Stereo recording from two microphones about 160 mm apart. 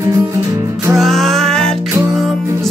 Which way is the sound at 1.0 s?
Centre (ahead or behind).